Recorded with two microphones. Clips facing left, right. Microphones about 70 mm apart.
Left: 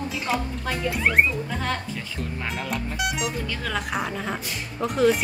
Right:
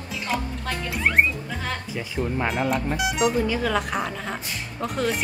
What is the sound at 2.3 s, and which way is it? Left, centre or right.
Speech, right.